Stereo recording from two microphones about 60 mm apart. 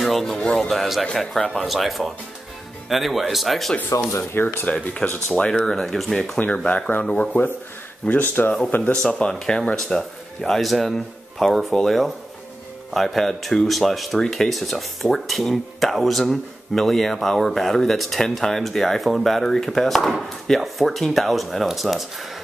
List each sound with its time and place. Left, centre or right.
0.0 s speech: centre
4.2 s speech: left
4.8 s speech: left
5.5 s speech: centre
6.4 s speech: left
8.9 s speech: centre
10.6 s speech: centre